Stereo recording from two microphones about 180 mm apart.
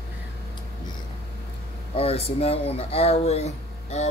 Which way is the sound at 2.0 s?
35° left (ahead or behind).